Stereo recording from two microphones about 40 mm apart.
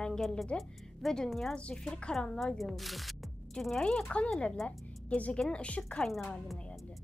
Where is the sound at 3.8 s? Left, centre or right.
Left.